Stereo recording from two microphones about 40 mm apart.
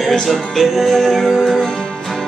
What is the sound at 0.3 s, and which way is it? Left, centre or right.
Music, centre.